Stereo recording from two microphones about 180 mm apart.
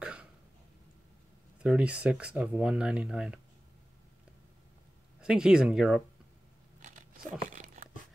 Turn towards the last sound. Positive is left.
turn(degrees=-45)  # may be behind; listen again after turning